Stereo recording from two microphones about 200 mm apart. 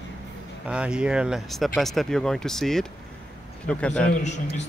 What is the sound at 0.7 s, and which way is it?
Speech, 5° right (ahead or behind).